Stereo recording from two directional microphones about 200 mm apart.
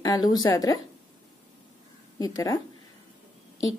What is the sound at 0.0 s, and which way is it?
Speech, 20° left (ahead or behind).